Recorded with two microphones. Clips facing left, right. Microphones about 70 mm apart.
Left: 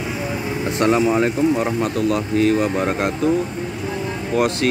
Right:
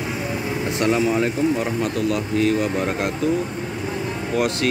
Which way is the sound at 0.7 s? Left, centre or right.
Left.